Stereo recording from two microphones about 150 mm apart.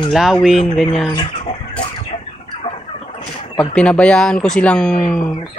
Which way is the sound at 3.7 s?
5° left (ahead or behind).